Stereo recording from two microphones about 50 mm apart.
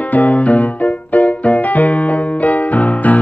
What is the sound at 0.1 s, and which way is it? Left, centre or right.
Music, left.